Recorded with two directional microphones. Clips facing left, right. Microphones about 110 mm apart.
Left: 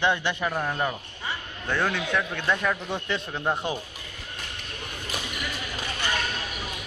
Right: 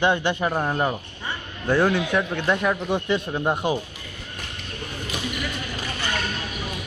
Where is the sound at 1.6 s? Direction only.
15° right (ahead or behind).